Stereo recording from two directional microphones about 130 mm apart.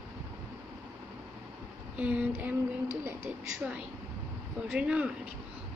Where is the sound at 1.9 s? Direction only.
10° right (ahead or behind).